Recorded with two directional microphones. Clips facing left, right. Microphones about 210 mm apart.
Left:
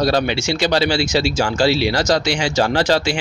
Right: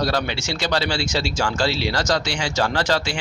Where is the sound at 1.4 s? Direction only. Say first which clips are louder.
Left 5 dB; 10° left (ahead or behind).